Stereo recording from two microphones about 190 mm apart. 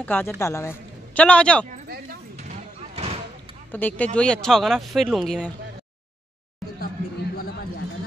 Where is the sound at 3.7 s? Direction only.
10° left (ahead or behind).